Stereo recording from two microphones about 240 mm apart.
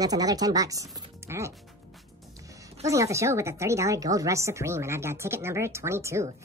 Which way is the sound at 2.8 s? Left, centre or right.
Centre.